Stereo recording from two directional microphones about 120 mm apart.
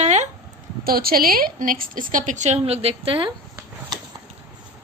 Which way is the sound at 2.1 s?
90° right.